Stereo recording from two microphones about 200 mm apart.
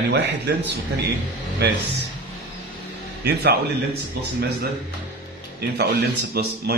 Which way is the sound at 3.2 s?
55° right (ahead or behind).